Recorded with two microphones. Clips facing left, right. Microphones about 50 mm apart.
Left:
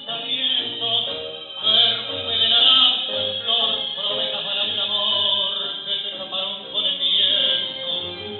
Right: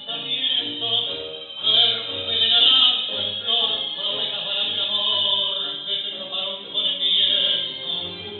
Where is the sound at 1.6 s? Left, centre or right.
Left.